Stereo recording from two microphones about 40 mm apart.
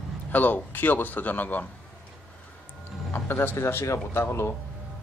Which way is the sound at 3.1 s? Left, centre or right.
Left.